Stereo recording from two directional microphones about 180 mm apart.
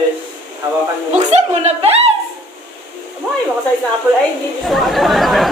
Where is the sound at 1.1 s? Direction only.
40° right (ahead or behind).